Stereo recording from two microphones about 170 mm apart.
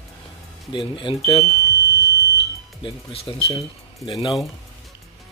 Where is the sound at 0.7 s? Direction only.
30° left (ahead or behind).